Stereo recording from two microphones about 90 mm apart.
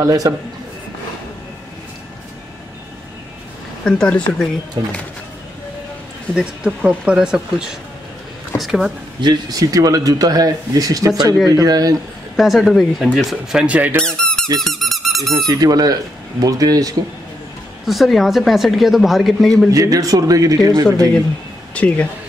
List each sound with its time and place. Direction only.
0.0 s speech: 40° right (ahead or behind)
3.8 s speech: 10° left (ahead or behind)
6.3 s speech: 10° right (ahead or behind)
9.2 s speech: 45° right (ahead or behind)
12.4 s speech: centre (ahead or behind)
13.7 s speech: 15° right (ahead or behind)
14.0 s squeak: 10° left (ahead or behind)
14.6 s dog: centre (ahead or behind)
15.3 s speech: 45° right (ahead or behind)
17.8 s speech: centre (ahead or behind)
19.7 s speech: 40° right (ahead or behind)
21.7 s speech: 15° left (ahead or behind)